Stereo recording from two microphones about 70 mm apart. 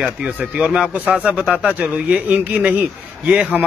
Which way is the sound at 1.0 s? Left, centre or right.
Right.